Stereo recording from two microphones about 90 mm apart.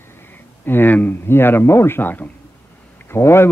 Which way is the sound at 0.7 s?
20° left (ahead or behind).